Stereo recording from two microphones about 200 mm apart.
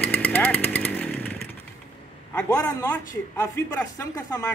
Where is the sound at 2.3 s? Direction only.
20° left (ahead or behind).